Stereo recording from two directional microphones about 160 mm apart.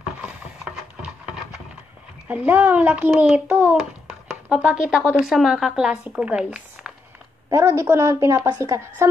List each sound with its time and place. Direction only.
1.0 s a sound: 5° right (ahead or behind)
2.2 s a child's voice: 10° right (ahead or behind)
7.4 s a woman's voice: 20° right (ahead or behind)